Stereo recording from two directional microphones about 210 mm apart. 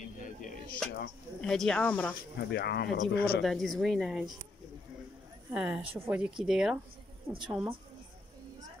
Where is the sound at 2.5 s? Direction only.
50° left (ahead or behind).